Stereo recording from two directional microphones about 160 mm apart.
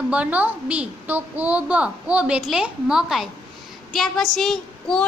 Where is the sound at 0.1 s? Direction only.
10° right (ahead or behind).